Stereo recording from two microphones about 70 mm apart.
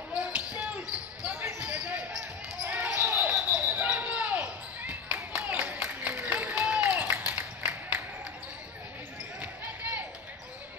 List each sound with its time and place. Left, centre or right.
0.1 s basketball bounce: centre